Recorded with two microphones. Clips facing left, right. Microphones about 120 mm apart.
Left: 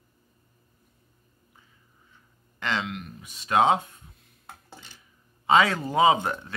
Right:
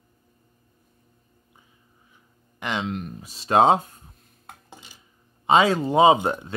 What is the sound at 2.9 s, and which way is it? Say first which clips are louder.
Speech: right 6 dB; 35° right (ahead or behind).